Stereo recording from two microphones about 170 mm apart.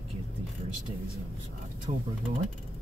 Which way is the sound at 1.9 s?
45° right (ahead or behind).